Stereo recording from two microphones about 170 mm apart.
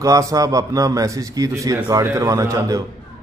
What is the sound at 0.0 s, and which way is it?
A man's voice, 20° right (ahead or behind).